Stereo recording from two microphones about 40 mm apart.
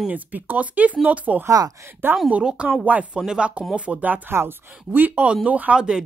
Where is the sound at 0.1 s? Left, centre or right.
Right.